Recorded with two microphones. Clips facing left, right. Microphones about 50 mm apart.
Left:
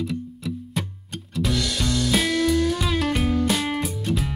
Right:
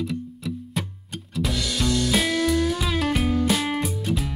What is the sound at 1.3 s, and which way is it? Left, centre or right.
Music, centre.